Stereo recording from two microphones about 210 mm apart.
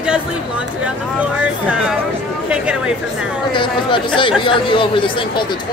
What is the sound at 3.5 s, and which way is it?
Speech, 20° left (ahead or behind).